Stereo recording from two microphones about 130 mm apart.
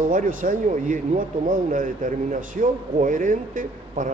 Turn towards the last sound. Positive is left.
turn(degrees=-90)